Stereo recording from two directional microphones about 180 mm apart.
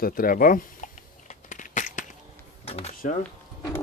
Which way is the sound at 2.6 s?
35° left (ahead or behind).